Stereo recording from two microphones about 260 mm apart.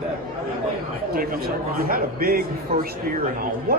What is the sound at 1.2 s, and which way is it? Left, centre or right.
A man's voice, right.